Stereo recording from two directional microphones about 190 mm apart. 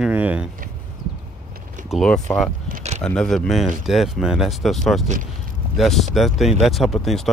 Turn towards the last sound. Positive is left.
turn(degrees=0)  # may be behind; listen again after turning